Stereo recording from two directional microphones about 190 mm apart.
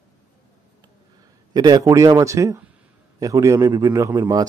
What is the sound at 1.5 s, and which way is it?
A man's voice, 20° right (ahead or behind).